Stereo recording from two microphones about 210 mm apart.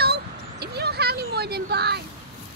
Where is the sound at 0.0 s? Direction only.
50° right (ahead or behind).